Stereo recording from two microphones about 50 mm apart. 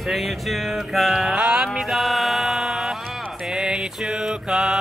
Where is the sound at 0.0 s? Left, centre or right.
Centre.